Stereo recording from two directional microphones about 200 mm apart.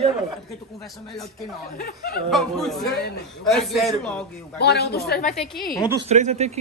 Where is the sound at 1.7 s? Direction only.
50° left (ahead or behind).